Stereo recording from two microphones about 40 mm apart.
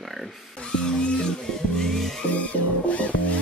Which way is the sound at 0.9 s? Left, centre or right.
Left.